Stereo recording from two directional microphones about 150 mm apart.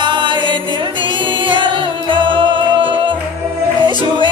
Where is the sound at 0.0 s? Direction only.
30° right (ahead or behind).